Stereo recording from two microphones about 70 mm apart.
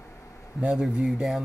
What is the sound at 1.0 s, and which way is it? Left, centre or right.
Speech, centre.